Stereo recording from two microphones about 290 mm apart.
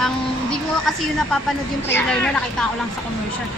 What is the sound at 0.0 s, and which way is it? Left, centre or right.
A woman's voice, centre.